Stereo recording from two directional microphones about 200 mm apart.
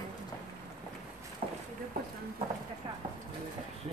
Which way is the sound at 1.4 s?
30° right (ahead or behind).